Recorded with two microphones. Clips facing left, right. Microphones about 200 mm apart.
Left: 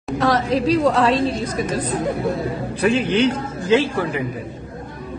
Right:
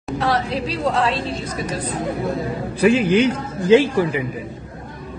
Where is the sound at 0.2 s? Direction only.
40° left (ahead or behind).